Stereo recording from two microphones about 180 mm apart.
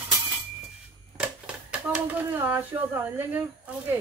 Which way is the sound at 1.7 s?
10° right (ahead or behind).